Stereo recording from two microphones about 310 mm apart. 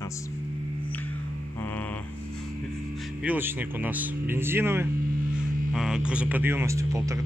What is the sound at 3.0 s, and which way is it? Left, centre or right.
Speech, centre.